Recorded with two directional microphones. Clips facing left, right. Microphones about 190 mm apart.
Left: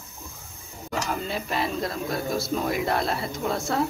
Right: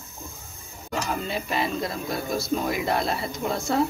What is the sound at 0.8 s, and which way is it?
Speech, centre (ahead or behind).